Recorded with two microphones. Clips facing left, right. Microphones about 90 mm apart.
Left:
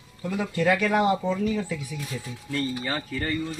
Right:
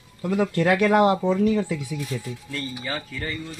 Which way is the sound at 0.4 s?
55° right (ahead or behind).